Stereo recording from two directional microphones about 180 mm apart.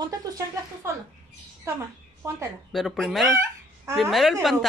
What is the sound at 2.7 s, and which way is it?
Speech, centre (ahead or behind).